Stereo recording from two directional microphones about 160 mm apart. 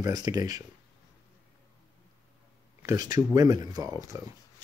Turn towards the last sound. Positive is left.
turn(degrees=-25)  # may be behind; listen again after turning